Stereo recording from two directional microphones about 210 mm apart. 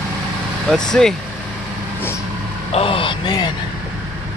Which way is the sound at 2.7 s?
25° left (ahead or behind).